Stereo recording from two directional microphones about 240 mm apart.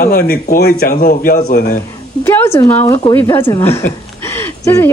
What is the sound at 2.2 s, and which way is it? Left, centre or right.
A woman's voice, centre.